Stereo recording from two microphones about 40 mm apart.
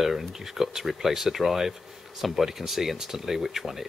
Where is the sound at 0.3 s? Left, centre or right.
Centre.